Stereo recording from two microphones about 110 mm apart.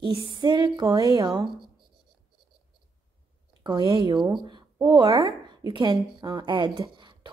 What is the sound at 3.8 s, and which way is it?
A woman's voice, 45° right (ahead or behind).